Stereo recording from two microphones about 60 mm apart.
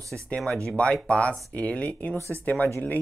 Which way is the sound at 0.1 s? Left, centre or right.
Centre.